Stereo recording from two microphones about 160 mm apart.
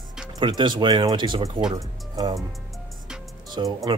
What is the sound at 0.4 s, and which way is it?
Speech, 30° right (ahead or behind).